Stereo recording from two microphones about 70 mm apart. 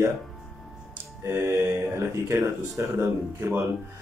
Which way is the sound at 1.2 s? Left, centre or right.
Right.